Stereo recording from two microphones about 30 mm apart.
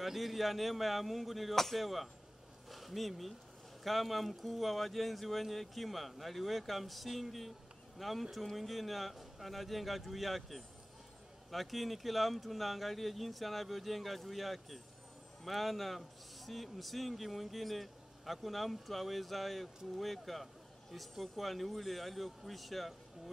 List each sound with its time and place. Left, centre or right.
0.0 s speech: centre
1.5 s speech: centre
1.8 s speech: centre